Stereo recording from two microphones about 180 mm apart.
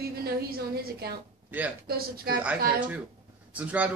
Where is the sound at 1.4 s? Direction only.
10° right (ahead or behind).